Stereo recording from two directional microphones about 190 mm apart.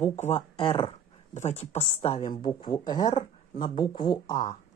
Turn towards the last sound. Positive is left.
turn(degrees=20)  # may be behind; listen again after turning